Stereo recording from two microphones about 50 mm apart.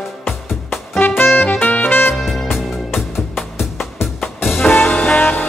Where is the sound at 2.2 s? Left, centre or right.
Centre.